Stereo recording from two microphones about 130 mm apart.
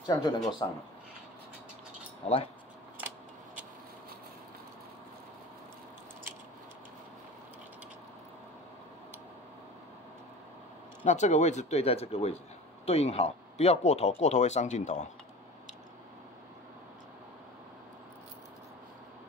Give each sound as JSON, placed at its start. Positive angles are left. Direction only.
{"t": 0.0, "sound": "speech", "side_deg": 30}
{"t": 2.2, "sound": "speech", "side_deg": 50}
{"t": 11.1, "sound": "speech", "side_deg": 65}